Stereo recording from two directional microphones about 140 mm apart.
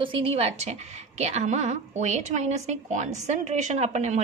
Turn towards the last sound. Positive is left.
turn(degrees=-55)  # may be behind; listen again after turning